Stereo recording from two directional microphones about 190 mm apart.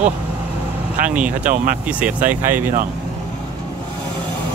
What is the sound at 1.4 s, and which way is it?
Speech, 45° right (ahead or behind).